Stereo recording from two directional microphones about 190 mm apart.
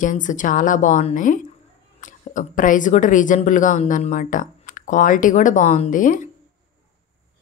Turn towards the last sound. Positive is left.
turn(degrees=45)  # may be behind; listen again after turning